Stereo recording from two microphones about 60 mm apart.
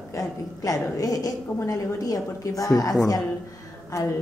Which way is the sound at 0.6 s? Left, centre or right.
Left.